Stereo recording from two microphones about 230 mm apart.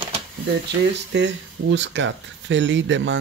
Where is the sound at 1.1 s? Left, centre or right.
Right.